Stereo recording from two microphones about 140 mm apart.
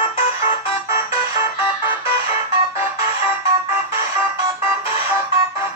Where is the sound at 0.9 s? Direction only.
20° right (ahead or behind).